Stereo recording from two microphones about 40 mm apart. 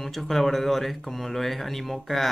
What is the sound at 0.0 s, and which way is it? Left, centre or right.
Speech, centre.